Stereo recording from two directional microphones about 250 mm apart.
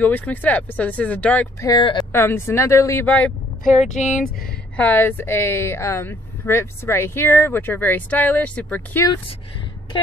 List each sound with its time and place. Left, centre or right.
0.0 s speech: centre